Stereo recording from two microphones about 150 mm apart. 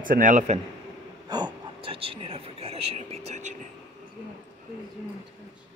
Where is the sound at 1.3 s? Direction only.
30° right (ahead or behind); by 3.5 s 50° right (ahead or behind).